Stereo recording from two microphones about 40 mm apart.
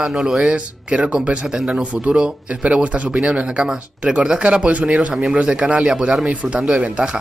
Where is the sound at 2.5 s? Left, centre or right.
Right.